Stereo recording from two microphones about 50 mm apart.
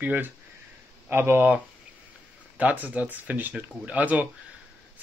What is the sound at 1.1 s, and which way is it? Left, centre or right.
Speech, right.